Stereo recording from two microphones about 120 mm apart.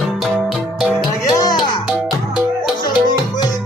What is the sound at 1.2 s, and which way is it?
Music, 30° left (ahead or behind).